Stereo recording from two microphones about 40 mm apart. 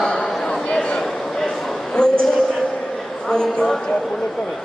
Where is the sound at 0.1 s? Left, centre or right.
Left.